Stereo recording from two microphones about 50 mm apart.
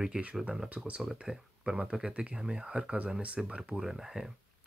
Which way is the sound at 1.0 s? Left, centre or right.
Centre.